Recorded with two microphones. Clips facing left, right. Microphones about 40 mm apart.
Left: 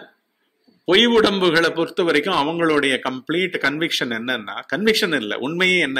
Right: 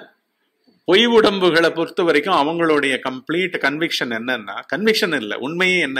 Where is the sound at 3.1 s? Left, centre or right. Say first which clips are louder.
Right 1 dB; left.